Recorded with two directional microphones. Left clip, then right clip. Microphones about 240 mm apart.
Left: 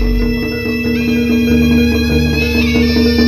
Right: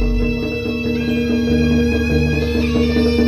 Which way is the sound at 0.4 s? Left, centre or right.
Left.